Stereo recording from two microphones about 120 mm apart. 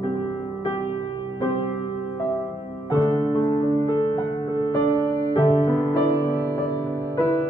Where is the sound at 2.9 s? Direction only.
30° left (ahead or behind).